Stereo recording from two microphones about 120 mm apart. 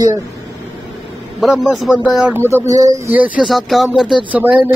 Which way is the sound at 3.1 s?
15° right (ahead or behind).